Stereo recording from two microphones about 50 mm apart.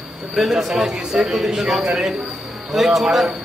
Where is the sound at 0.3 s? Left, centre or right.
Centre.